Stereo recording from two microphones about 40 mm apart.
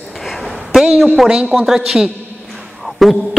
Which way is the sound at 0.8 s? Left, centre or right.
Centre.